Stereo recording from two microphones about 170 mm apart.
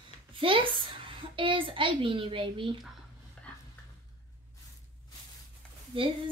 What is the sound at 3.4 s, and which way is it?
Dog, 5° left (ahead or behind).